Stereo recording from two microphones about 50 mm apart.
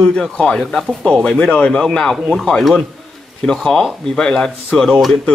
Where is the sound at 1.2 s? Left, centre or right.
Left.